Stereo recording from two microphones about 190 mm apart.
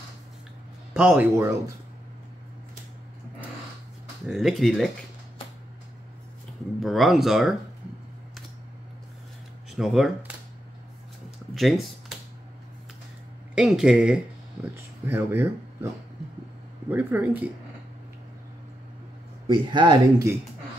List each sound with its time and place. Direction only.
0.9 s speech: 5° right (ahead or behind)
4.3 s speech: centre (ahead or behind)
6.8 s speech: centre (ahead or behind)
9.7 s speech: centre (ahead or behind)
11.5 s speech: centre (ahead or behind)
13.6 s speech: 5° right (ahead or behind)
16.9 s speech: 10° right (ahead or behind)
19.4 s speech: 25° right (ahead or behind)